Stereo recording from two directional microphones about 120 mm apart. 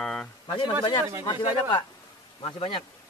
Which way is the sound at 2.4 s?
45° left (ahead or behind).